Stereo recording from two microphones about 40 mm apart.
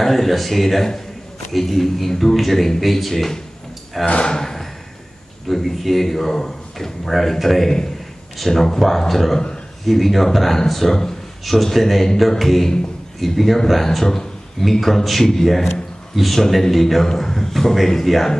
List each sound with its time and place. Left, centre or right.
0.0 s speech: centre
4.0 s speech: left
4.3 s speech: centre
14.6 s speech: centre